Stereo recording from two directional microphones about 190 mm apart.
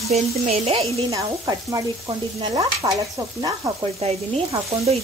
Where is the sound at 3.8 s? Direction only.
30° right (ahead or behind).